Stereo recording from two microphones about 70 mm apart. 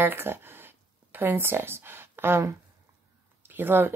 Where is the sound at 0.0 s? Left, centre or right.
Right.